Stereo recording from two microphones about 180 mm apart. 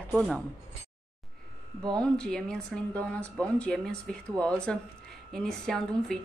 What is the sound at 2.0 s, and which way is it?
A woman's voice, 5° left (ahead or behind).